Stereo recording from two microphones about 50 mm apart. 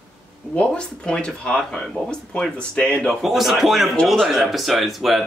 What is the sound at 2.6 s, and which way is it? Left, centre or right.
Speech, left.